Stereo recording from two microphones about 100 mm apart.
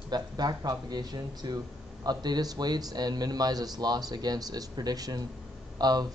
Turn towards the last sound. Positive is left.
turn(degrees=-40)  # may be behind; listen again after turning